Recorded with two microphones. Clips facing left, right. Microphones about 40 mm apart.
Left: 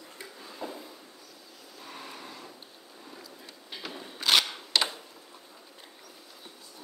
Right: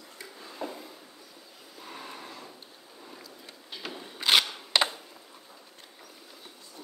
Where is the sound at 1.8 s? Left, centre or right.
Centre.